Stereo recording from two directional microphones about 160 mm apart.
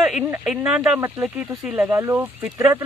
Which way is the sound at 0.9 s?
15° right (ahead or behind).